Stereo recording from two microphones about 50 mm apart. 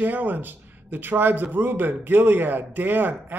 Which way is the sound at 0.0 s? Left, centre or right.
Right.